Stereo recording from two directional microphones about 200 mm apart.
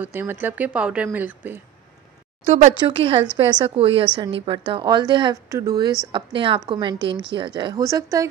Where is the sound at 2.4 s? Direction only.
35° right (ahead or behind).